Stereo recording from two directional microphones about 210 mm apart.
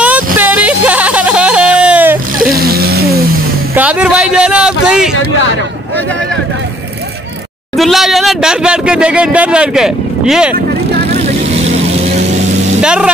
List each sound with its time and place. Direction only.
0.0 s a sound: 5° right (ahead or behind)
2.5 s vehicle: 45° right (ahead or behind)
3.7 s speech: 5° right (ahead or behind)
7.7 s a sound: centre (ahead or behind)
11.2 s vehicle: 30° right (ahead or behind)
12.8 s speech: 5° right (ahead or behind)